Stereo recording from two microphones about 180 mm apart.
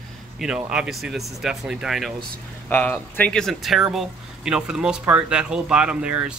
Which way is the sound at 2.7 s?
10° left (ahead or behind).